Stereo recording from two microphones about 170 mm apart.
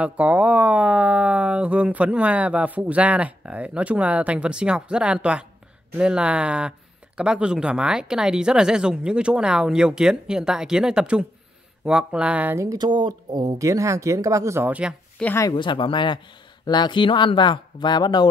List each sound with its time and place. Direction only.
0.0 s speech: 10° right (ahead or behind)
15.1 s speech: 10° left (ahead or behind)
15.4 s speech: 25° left (ahead or behind)